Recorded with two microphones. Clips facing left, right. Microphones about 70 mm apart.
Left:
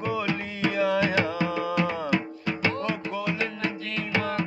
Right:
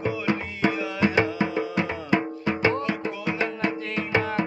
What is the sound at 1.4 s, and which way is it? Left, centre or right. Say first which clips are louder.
Music: even; right.